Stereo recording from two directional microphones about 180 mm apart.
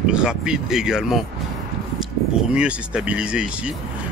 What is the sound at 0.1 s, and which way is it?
Speech, 5° right (ahead or behind).